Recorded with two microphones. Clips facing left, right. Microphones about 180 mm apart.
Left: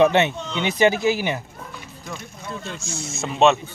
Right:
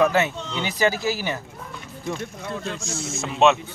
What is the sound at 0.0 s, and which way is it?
Speech, 25° left (ahead or behind).